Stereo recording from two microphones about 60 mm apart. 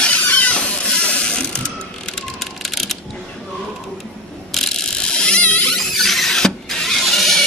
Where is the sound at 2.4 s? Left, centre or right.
Centre.